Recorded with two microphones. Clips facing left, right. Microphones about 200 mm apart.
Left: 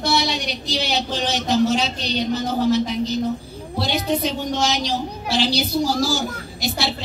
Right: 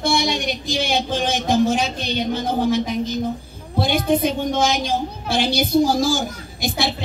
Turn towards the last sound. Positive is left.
turn(degrees=-50)  # may be behind; listen again after turning